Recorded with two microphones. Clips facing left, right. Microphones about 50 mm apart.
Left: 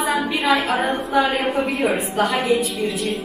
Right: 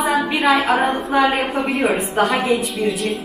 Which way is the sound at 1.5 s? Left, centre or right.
Centre.